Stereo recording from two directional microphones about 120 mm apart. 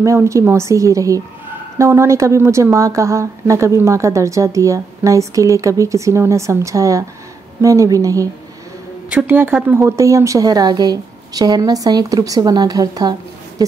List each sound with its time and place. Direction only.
0.0 s a woman's voice: 25° right (ahead or behind)
9.1 s a woman's voice: 15° right (ahead or behind); by 13.7 s 30° right (ahead or behind)